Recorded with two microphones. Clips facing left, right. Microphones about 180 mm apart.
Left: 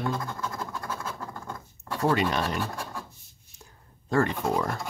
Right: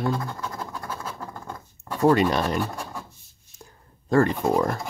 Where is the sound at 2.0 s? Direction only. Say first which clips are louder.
Right 6 dB; 40° right (ahead or behind).